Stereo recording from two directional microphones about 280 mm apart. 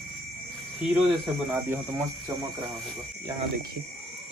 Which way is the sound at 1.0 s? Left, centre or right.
Centre.